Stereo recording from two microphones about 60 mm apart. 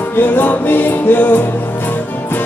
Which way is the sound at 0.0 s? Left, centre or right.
Left.